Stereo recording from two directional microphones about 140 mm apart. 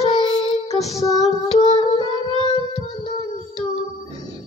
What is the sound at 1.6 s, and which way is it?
Music, 35° left (ahead or behind).